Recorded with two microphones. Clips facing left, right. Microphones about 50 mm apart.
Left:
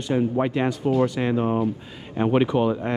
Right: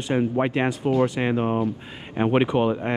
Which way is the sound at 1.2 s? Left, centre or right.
Right.